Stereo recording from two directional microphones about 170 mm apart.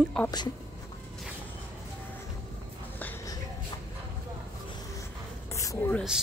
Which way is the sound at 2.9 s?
10° left (ahead or behind).